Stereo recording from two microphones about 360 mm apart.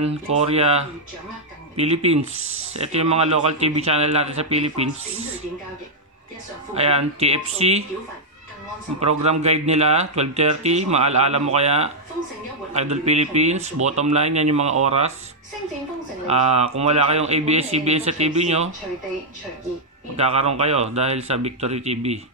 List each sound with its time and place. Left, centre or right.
0.0 s speech: centre
2.3 s speech: right
2.7 s speech: centre
6.7 s speech: centre
9.2 s speech: centre
16.3 s speech: centre
20.2 s speech: centre